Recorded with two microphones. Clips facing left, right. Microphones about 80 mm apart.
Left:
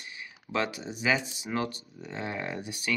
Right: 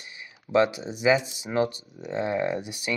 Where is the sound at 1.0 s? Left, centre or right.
Centre.